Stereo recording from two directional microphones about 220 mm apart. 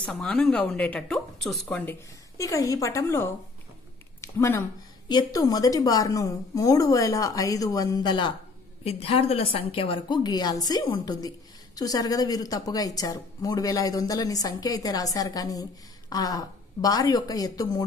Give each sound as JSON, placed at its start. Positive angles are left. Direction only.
{"t": 0.0, "sound": "a woman's voice", "side_deg": 5}